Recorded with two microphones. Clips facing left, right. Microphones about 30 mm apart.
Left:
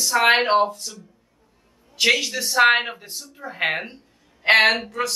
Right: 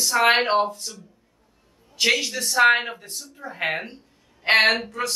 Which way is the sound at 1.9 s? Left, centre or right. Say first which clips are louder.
Left 2 dB; centre.